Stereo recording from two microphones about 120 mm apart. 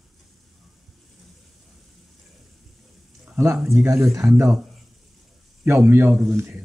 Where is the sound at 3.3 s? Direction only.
20° right (ahead or behind).